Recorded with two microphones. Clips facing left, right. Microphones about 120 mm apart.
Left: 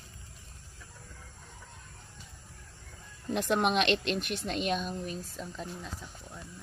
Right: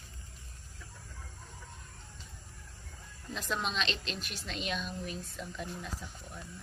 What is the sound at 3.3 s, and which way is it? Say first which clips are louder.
Speech: left 8 dB; 60° left (ahead or behind).